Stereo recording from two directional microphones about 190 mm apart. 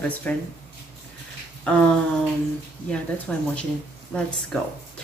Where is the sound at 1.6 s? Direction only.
5° left (ahead or behind).